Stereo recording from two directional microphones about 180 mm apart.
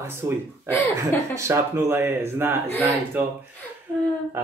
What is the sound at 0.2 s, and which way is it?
Speech, 20° right (ahead or behind).